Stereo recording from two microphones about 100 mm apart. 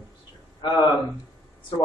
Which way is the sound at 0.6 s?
50° left (ahead or behind).